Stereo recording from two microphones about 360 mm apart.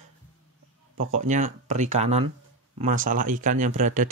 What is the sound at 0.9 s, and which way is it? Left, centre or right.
Speech, centre.